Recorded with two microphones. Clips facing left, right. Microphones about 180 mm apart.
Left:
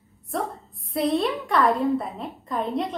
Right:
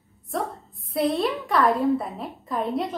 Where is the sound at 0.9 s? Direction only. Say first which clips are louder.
Even; centre (ahead or behind).